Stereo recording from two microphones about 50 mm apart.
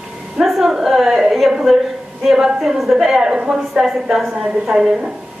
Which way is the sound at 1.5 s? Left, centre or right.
Centre.